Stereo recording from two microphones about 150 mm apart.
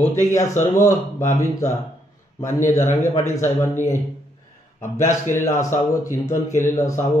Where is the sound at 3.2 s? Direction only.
15° left (ahead or behind).